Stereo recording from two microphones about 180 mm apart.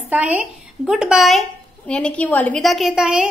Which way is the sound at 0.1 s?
5° right (ahead or behind).